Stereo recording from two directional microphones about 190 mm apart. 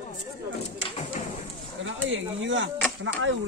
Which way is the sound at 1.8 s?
85° right.